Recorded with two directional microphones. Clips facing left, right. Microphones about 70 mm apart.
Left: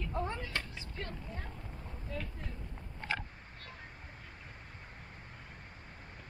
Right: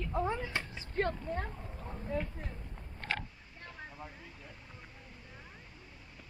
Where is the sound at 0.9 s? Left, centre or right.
Right.